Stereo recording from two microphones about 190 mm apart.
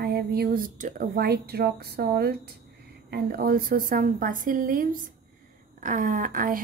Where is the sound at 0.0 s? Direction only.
55° right (ahead or behind).